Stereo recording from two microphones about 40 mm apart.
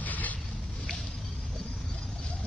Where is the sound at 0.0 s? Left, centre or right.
Left.